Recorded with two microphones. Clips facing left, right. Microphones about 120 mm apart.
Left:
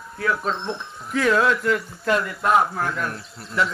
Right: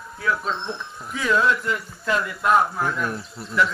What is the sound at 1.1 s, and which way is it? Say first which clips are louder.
Speech: left 2 dB; 60° left (ahead or behind).